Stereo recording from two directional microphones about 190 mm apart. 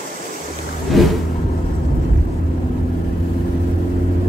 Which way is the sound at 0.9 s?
Centre (ahead or behind).